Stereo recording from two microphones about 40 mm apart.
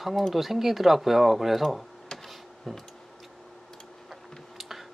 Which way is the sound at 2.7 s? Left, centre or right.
Centre.